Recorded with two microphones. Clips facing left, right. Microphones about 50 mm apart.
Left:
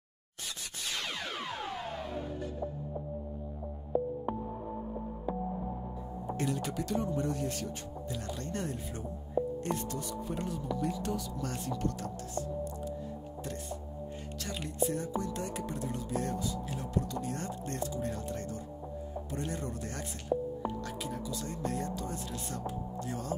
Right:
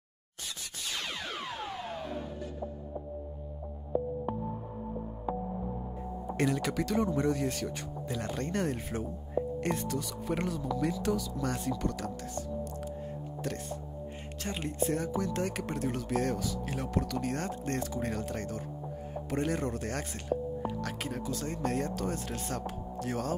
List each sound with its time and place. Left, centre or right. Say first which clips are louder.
6.3 s speech: right 4 dB; right
8.4 s speech: right 5 dB; right
14.4 s speech: right 4 dB; right
14.9 s speech: right 3 dB; right
19.3 s speech: right 7 dB; right
23.0 s speech: right 8 dB; right